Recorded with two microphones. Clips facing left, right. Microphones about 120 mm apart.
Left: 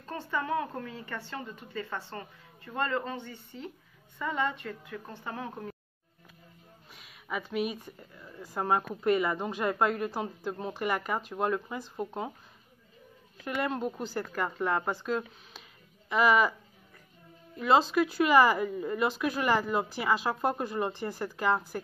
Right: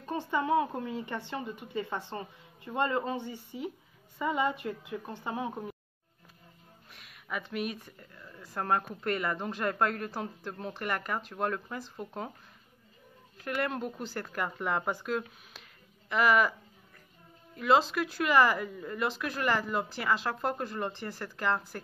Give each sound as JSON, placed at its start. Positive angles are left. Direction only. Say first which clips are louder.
{"t": 0.0, "sound": "a woman's voice", "louder": "right 3 dB", "side_deg": -15}
{"t": 6.9, "sound": "speech", "louder": "left 2 dB", "side_deg": 0}
{"t": 13.5, "sound": "speech", "louder": "left 1 dB", "side_deg": 0}
{"t": 17.6, "sound": "speech", "louder": "left 2 dB", "side_deg": 0}